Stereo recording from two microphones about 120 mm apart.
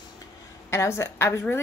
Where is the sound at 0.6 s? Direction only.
25° left (ahead or behind).